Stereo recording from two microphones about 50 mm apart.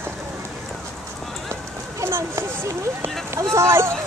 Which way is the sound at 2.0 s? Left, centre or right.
Right.